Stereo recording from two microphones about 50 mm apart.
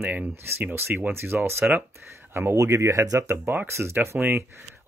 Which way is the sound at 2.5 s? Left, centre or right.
Right.